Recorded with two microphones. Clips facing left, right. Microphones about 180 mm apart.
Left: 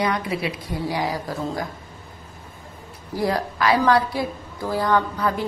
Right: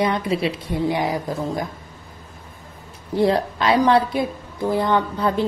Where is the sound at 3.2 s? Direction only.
25° right (ahead or behind).